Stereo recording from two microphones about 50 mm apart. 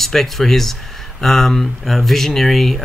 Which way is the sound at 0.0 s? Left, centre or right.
Centre.